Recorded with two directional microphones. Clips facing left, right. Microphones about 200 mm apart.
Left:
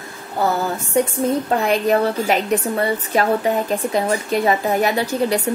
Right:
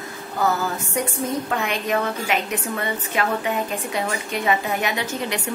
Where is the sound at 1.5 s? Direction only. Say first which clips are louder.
Left 8 dB; 35° left (ahead or behind).